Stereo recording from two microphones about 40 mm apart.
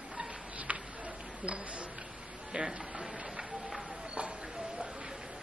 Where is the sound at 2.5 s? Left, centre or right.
Centre.